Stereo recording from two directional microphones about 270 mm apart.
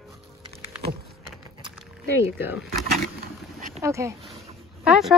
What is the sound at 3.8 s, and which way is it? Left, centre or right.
Speech, centre.